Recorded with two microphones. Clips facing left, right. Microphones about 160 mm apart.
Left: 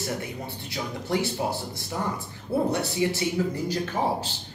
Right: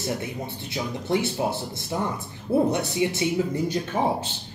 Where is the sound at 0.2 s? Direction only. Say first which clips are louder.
Right 2 dB; 20° right (ahead or behind).